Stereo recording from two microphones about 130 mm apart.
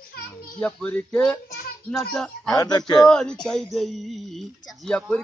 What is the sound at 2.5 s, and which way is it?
Speech, 30° left (ahead or behind).